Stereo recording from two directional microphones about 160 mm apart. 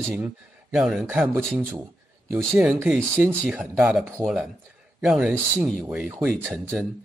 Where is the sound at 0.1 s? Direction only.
15° right (ahead or behind).